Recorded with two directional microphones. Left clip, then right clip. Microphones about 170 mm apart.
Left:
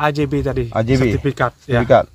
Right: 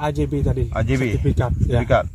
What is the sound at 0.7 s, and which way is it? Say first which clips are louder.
Speech: left 7 dB; 60° left (ahead or behind).